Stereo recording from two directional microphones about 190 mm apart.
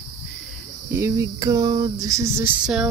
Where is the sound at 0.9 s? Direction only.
15° right (ahead or behind).